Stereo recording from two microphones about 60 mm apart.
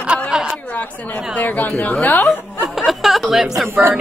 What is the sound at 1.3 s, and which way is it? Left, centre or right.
Speech, left.